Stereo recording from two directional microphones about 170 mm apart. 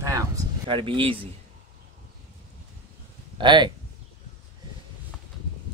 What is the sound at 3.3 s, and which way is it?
Speech, 25° right (ahead or behind).